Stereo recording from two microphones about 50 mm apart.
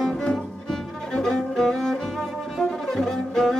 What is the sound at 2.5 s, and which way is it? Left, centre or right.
Music, centre.